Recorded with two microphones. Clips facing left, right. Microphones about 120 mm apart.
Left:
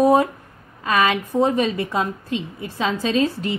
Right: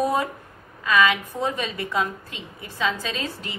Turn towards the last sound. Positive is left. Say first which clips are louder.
# left 11 dB
turn(degrees=35)  # may be behind; listen again after turning